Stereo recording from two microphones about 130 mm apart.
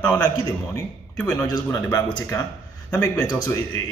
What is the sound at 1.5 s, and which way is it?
Speech, 30° left (ahead or behind).